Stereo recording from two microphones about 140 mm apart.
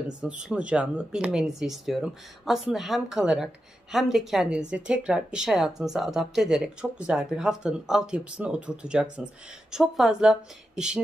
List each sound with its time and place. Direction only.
0.2 s speech: 5° right (ahead or behind)